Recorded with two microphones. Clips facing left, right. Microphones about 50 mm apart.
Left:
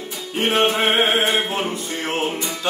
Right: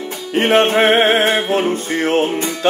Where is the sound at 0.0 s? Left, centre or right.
Right.